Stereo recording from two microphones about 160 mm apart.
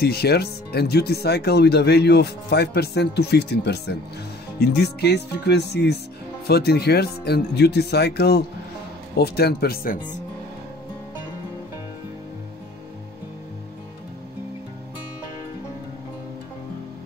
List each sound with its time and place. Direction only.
0.0 s speech: 80° left